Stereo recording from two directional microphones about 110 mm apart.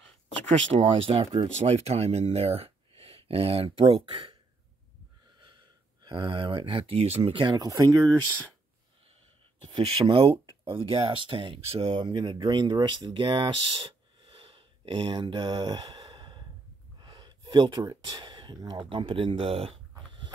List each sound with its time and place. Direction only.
0.7 s speech: 60° right (ahead or behind)
1.6 s speech: 80° right; by 4.4 s 55° right (ahead or behind)
6.0 s speech: 45° right (ahead or behind)
7.6 s speech: 35° right (ahead or behind)
9.9 s speech: 50° right (ahead or behind)